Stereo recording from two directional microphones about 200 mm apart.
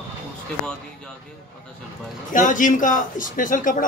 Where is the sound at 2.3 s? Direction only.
40° left (ahead or behind).